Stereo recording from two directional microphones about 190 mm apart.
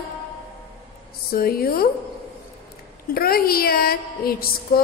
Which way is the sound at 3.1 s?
50° left (ahead or behind).